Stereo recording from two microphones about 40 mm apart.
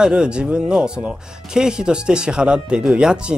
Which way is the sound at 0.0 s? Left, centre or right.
Right.